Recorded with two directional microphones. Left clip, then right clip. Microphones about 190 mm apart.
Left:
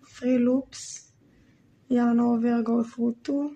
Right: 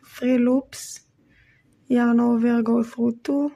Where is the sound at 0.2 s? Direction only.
30° right (ahead or behind).